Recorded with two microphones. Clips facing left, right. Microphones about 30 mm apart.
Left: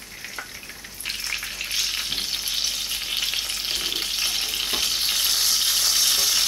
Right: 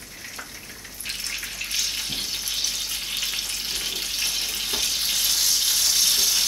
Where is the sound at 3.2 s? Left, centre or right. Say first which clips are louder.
Left 2 dB; left.